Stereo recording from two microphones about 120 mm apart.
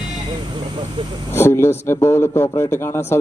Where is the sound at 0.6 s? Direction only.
50° right (ahead or behind).